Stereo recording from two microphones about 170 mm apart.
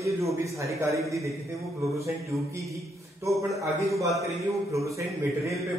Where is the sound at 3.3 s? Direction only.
20° right (ahead or behind).